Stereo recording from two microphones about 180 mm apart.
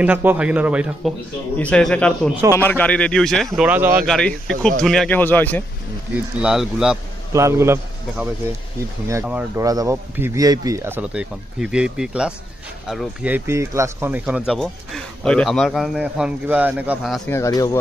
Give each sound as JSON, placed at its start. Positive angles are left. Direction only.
{"t": 0.0, "sound": "speech", "side_deg": -10}
{"t": 1.6, "sound": "a man's voice", "side_deg": 5}
{"t": 3.5, "sound": "speech", "side_deg": -10}
{"t": 4.0, "sound": "speech", "side_deg": 5}
{"t": 6.4, "sound": "speech", "side_deg": -5}
{"t": 7.3, "sound": "speech", "side_deg": -15}
{"t": 9.6, "sound": "speech", "side_deg": -20}
{"t": 17.3, "sound": "speech", "side_deg": 20}